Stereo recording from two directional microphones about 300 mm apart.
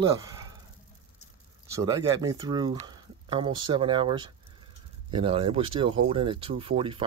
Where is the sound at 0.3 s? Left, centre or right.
Centre.